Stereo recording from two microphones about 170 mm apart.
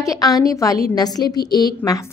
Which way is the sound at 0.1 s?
20° left (ahead or behind).